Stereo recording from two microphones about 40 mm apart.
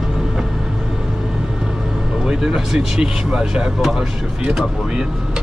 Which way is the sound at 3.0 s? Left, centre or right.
Right.